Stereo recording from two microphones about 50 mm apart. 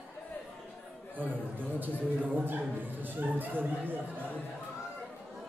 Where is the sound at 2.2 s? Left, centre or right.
Right.